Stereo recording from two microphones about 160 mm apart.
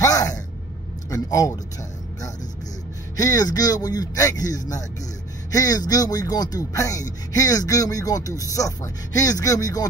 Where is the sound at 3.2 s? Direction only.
25° left (ahead or behind).